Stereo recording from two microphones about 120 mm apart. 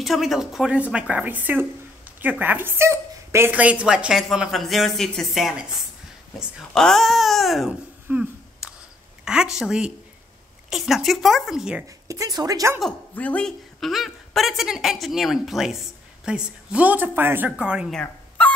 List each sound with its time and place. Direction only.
0.0 s a woman's voice: centre (ahead or behind)
6.7 s a woman's voice: 5° left (ahead or behind)
8.1 s a sound: 10° right (ahead or behind)
9.2 s a woman's voice: 5° right (ahead or behind)
12.1 s speech: 30° right (ahead or behind)
13.1 s a woman's voice: 10° left (ahead or behind); by 17.9 s 5° right (ahead or behind)